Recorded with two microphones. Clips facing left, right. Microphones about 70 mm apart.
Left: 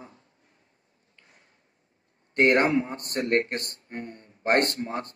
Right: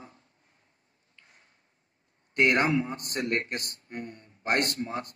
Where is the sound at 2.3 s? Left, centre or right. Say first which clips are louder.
Left 3 dB; left.